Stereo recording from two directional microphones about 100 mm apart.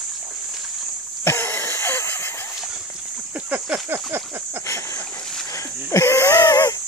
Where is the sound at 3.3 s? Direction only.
15° right (ahead or behind).